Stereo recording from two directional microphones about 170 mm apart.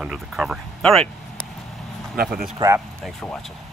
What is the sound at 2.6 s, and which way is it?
Speech, 30° right (ahead or behind).